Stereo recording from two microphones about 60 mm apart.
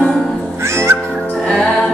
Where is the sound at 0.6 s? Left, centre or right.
Right.